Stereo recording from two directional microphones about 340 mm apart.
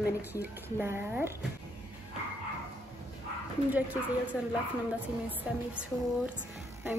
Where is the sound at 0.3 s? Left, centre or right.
Centre.